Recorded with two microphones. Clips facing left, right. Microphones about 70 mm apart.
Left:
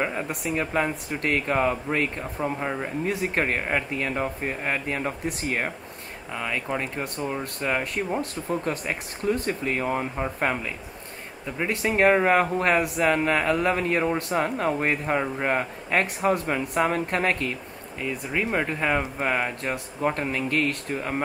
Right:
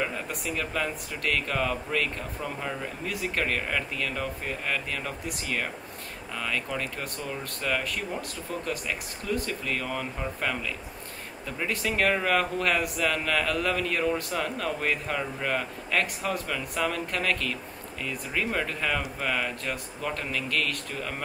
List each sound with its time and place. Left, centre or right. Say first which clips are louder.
0.0 s a man's voice: left 4 dB; left
6.3 s a man's voice: left 3 dB; left